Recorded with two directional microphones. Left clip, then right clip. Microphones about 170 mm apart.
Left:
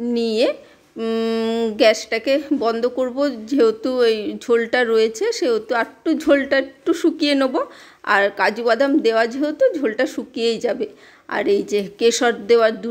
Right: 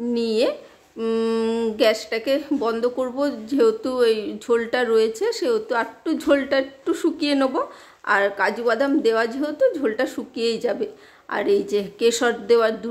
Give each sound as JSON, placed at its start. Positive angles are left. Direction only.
{"t": 0.1, "sound": "speech", "side_deg": 20}